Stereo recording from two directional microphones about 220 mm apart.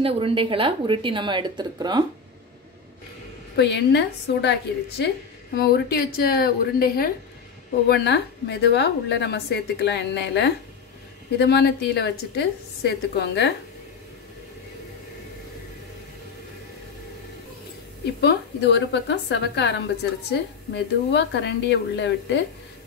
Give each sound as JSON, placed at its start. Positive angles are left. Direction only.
{"t": 0.0, "sound": "a woman's voice", "side_deg": -25}
{"t": 3.5, "sound": "a woman's voice", "side_deg": 50}
{"t": 18.2, "sound": "a woman's voice", "side_deg": 50}